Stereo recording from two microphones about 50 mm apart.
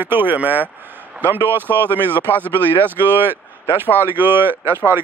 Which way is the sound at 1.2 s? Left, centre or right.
Right.